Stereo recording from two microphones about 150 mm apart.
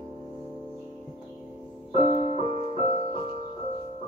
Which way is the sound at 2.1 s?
40° right (ahead or behind).